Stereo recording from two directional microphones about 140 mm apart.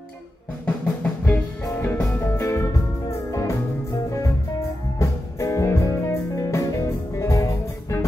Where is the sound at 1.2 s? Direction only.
15° left (ahead or behind).